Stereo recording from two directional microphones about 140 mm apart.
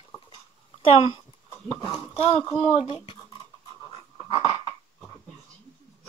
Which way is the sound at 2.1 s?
40° left (ahead or behind).